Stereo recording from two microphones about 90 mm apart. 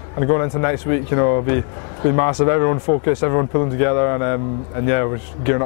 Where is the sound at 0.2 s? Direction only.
25° left (ahead or behind).